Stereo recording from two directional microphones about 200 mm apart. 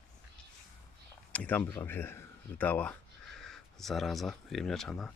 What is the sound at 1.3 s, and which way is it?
Speech, 5° left (ahead or behind).